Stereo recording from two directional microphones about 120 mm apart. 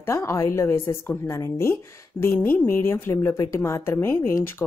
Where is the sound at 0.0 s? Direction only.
20° left (ahead or behind).